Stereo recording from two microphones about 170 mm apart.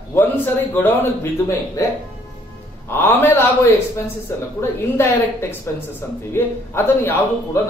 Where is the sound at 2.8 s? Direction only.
15° left (ahead or behind).